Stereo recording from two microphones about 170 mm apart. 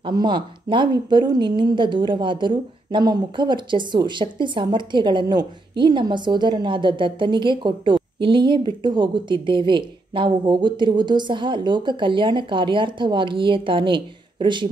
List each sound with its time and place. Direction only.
0.0 s a woman's voice: 25° right (ahead or behind)